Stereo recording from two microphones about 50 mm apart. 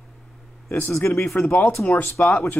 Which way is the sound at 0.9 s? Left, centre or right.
Left.